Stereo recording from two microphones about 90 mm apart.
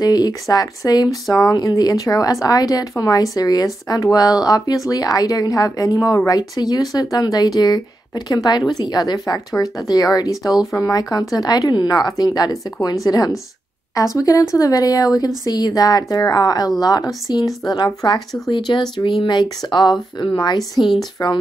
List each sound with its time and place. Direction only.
0.0 s a woman's voice: 45° left (ahead or behind)
20.8 s speech: centre (ahead or behind)